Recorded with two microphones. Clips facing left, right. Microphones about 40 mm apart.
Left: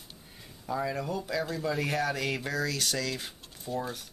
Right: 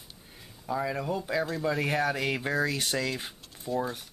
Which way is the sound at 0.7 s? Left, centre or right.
Centre.